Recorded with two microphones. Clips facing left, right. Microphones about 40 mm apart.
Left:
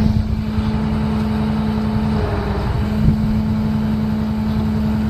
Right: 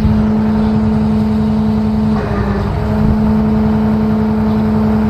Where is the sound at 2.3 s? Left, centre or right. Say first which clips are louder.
Right 6 dB; right.